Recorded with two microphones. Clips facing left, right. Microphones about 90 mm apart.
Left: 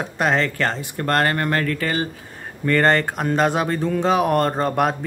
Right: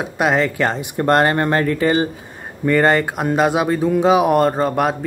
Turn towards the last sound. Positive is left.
turn(degrees=0)  # may be behind; listen again after turning